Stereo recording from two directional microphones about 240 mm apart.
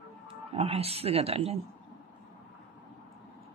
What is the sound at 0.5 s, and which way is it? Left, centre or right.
Speech, right.